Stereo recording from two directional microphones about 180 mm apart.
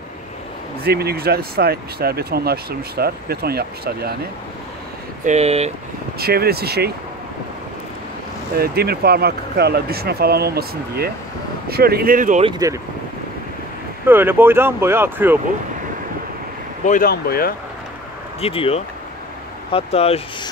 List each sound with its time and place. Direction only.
0.8 s speech: 60° right (ahead or behind)
5.2 s speech: 40° right (ahead or behind)
6.1 s speech: 60° right (ahead or behind)
8.5 s speech: 60° right (ahead or behind)
12.4 s speech: 20° right (ahead or behind)
14.0 s speech: 10° right (ahead or behind)
16.8 s speech: 45° left (ahead or behind)
17.1 s speech: 55° left (ahead or behind)
18.4 s speech: 30° left (ahead or behind)